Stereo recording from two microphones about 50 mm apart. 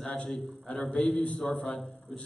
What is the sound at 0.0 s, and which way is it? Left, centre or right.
A man's voice, centre.